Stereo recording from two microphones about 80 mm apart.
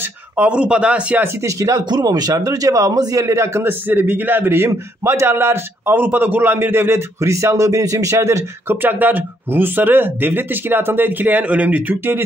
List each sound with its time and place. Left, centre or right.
0.4 s speech: centre
1.2 s speech: right
1.9 s a man's voice: right
3.8 s a man's voice: right